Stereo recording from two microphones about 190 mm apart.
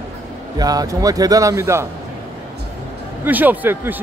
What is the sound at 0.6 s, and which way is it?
A man's voice, 20° right (ahead or behind).